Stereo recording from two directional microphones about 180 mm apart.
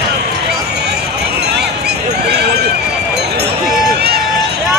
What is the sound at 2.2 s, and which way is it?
Neigh, 65° right (ahead or behind).